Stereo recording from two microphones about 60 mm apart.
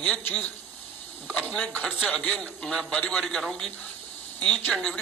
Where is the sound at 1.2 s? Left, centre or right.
Left.